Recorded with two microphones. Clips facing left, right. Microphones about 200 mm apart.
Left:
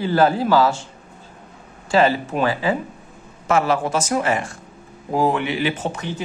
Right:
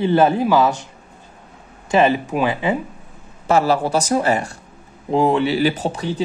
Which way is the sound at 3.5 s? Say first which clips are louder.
Right 2 dB; 35° right (ahead or behind).